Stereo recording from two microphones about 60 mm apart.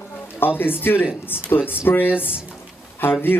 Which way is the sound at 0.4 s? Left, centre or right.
Left.